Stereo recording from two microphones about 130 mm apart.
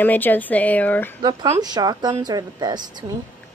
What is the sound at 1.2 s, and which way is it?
Speech, 30° right (ahead or behind).